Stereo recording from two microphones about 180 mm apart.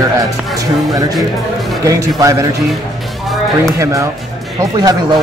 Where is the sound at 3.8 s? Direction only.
15° right (ahead or behind).